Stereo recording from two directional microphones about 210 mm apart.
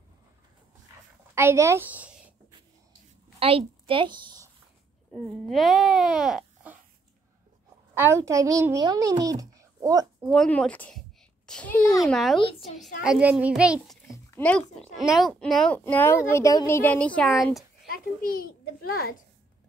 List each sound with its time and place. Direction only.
1.3 s a woman's voice: 10° right (ahead or behind)
3.3 s a woman's voice: 25° right (ahead or behind)
5.1 s speech: centre (ahead or behind)
7.9 s a child's voice: 10° right (ahead or behind)
10.3 s a child's voice: 5° left (ahead or behind)
14.1 s a woman's voice: 10° left (ahead or behind)
17.8 s a child's voice: 45° left (ahead or behind)